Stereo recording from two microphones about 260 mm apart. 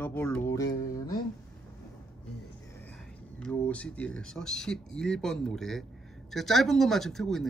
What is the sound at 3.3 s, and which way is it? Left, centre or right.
Speech, centre.